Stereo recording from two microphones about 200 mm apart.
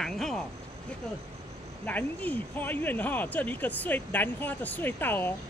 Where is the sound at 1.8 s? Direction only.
10° left (ahead or behind).